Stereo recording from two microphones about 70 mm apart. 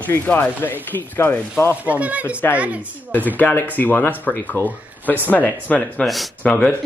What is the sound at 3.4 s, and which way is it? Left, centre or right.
Speech, left.